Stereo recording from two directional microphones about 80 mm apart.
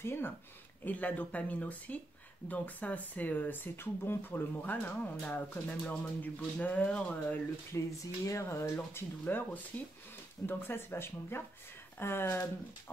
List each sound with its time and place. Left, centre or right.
0.0 s speech: left
0.8 s speech: left
7.7 s speech: left